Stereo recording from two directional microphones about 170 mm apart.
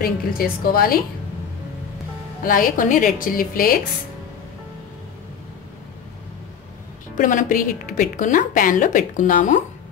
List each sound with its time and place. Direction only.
0.0 s a woman's voice: 60° left (ahead or behind)
2.4 s a woman's voice: 55° left (ahead or behind)
7.2 s a woman's voice: 50° left (ahead or behind)